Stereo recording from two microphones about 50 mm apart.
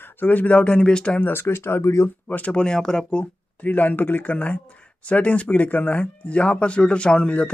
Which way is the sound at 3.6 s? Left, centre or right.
Left.